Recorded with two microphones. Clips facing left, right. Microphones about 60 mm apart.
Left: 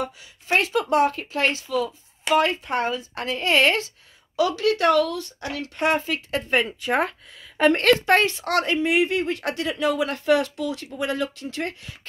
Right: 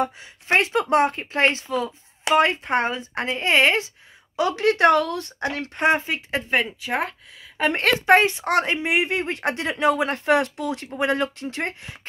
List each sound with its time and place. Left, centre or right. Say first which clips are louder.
0.0 s a woman's voice: right 5 dB; right; by 3.9 s centre
4.4 s a woman's voice: right 2 dB; right
6.5 s speech: left 2 dB; centre; by 12.0 s right